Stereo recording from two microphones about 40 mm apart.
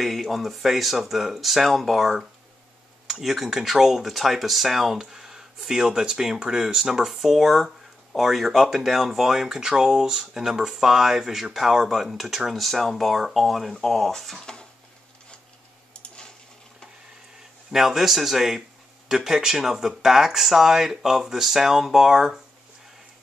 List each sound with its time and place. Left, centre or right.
0.0 s speech: centre
14.4 s dishes: centre
15.9 s a sound: left
17.6 s speech: centre